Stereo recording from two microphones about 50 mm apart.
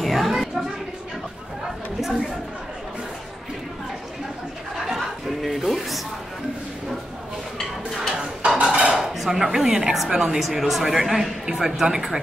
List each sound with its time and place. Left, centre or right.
0.0 s music: centre
2.0 s chatter: centre
4.8 s chatter: centre
8.7 s a sound: centre
10.4 s a man's voice: centre